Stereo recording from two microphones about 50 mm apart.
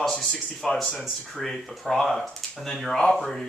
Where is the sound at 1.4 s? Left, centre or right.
Centre.